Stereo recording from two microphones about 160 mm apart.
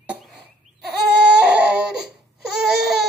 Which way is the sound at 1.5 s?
5° right (ahead or behind).